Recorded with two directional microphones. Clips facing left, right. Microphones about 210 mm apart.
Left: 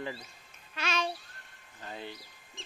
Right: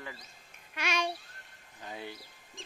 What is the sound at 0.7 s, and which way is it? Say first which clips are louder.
Babbling: even; 15° right (ahead or behind).